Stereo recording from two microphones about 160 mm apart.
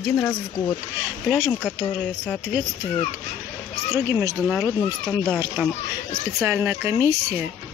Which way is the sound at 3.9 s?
15° right (ahead or behind).